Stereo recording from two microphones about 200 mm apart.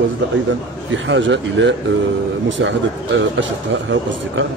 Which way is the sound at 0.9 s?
65° right (ahead or behind).